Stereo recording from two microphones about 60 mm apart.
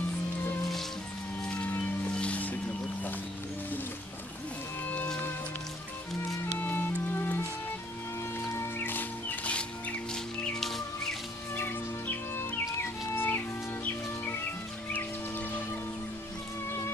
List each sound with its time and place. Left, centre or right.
1.4 s music: centre
6.6 s music: left
8.5 s music: left; by 10.2 s centre
10.5 s music: centre
11.5 s music: left
14.9 s music: left
16.6 s music: left